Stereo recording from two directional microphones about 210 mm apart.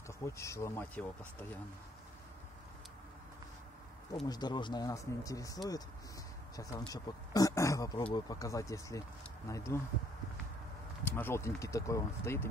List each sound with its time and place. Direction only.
0.2 s speech: 15° left (ahead or behind)
4.3 s speech: 20° left (ahead or behind)
11.1 s speech: 10° left (ahead or behind)